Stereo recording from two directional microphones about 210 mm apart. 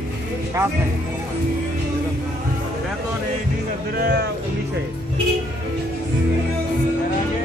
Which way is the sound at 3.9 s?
50° right (ahead or behind).